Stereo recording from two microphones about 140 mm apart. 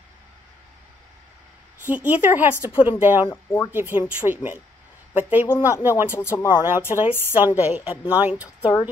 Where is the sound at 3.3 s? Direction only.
15° left (ahead or behind).